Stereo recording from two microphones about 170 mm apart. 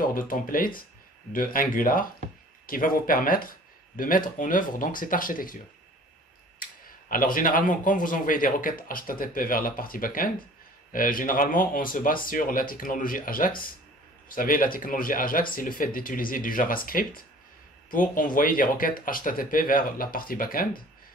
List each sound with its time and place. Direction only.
0.0 s speech: 55° left (ahead or behind)
7.1 s speech: 55° left (ahead or behind)